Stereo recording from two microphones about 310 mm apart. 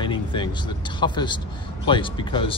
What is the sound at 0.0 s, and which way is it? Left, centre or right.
Speech, centre.